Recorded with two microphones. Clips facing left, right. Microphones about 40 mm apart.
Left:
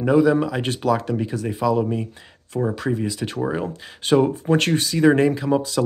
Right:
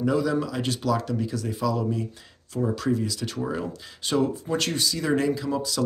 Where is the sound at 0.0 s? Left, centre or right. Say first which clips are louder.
Left 7 dB; left.